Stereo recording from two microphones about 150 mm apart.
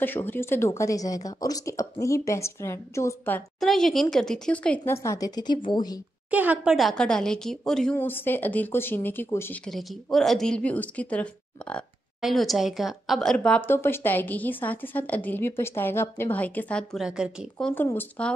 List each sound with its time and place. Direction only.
0.0 s speech: 15° left (ahead or behind)
3.5 s speech: centre (ahead or behind); by 5.9 s 30° left (ahead or behind)
6.3 s speech: 10° right (ahead or behind)
7.9 s speech: 15° left (ahead or behind)
9.7 s speech: centre (ahead or behind)
17.0 s speech: 5° right (ahead or behind)
17.8 s speech: 10° left (ahead or behind)